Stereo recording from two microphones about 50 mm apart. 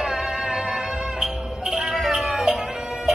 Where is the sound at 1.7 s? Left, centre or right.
Centre.